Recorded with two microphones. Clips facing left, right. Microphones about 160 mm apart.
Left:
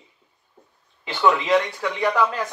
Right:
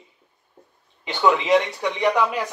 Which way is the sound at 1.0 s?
20° right (ahead or behind).